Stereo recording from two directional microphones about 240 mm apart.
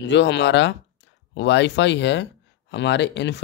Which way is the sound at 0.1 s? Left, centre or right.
Left.